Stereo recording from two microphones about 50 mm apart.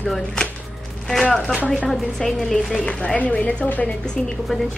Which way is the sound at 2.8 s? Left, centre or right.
Left.